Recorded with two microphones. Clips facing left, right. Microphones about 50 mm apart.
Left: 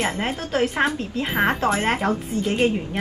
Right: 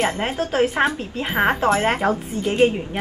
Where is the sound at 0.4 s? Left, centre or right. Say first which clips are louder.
Right 4 dB; right.